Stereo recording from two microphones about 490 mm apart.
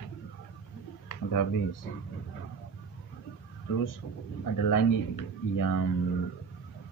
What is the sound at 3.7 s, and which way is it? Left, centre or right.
A man's voice, left.